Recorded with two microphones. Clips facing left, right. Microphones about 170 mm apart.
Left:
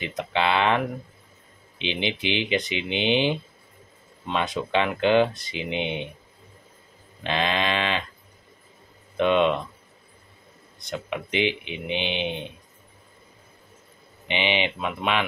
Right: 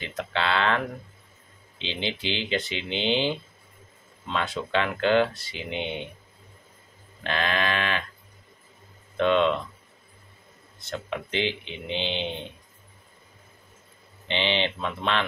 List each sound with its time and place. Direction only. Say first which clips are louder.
0.0 s speech: left 4 dB; 15° left (ahead or behind)
7.2 s speech: left 2 dB; 20° left (ahead or behind)
9.1 s speech: left 1 dB; 15° left (ahead or behind)
10.8 s speech: left 1 dB; 15° left (ahead or behind)
14.2 s speech: left 1 dB; 15° left (ahead or behind)